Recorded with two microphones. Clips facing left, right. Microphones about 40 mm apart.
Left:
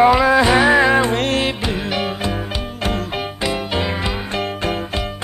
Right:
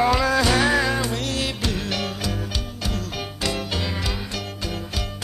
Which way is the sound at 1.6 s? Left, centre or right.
Left.